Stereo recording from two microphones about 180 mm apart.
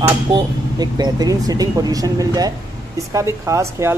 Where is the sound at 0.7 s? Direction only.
20° right (ahead or behind).